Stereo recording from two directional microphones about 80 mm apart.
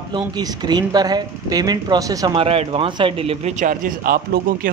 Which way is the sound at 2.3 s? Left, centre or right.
Right.